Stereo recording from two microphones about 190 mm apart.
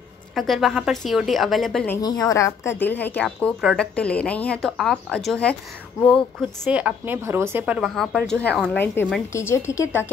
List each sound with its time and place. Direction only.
0.4 s a woman's voice: centre (ahead or behind)
2.0 s a woman's voice: 20° left (ahead or behind)
6.6 s a woman's voice: 5° right (ahead or behind); by 10.0 s 15° left (ahead or behind)